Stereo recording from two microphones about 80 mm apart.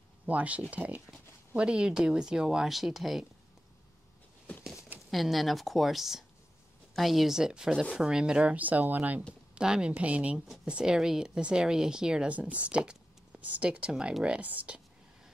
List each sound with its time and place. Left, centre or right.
0.3 s speech: centre
5.1 s speech: centre; by 9.2 s right
9.6 s speech: centre